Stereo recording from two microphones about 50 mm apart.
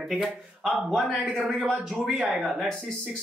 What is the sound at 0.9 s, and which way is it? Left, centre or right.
Speech, centre.